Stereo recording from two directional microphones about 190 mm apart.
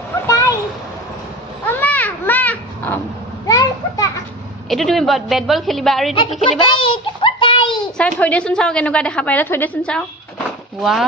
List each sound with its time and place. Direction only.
0.3 s a sound: 15° left (ahead or behind)
1.7 s children playing: 10° left (ahead or behind)
4.6 s a woman's voice: centre (ahead or behind)
6.8 s child singing: 25° left (ahead or behind)
7.8 s a woman's voice: 5° left (ahead or behind)